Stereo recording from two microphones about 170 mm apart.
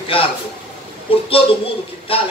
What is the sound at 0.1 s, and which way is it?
Speech, 30° left (ahead or behind).